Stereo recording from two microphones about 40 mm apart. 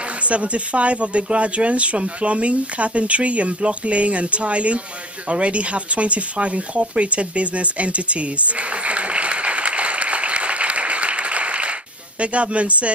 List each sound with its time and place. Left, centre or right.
0.3 s speech: right
5.3 s a sound: right
12.2 s speech: right